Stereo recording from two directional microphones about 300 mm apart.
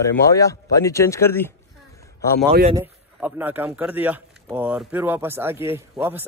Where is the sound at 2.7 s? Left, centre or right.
Centre.